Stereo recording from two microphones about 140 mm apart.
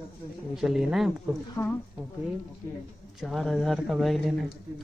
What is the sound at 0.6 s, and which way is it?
Speech, 5° right (ahead or behind).